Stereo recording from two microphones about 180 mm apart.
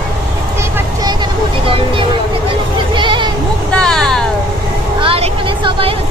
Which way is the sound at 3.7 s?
5° left (ahead or behind).